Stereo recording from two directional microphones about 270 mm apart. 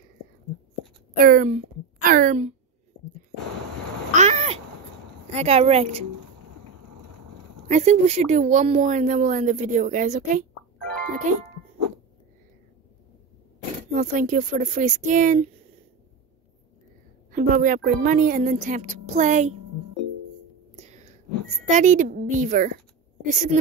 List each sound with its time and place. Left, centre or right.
1.1 s a woman's voice: right
4.1 s cat: right
5.3 s speech: right
7.6 s speech: right
13.9 s speech: right
17.3 s speech: right
20.7 s whispering: right
21.7 s a woman's voice: right